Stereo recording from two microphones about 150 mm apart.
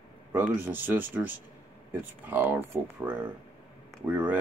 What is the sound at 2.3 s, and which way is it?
Speech, 10° right (ahead or behind).